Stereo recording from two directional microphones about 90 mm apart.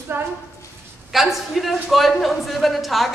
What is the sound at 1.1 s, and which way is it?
A man's voice, centre (ahead or behind).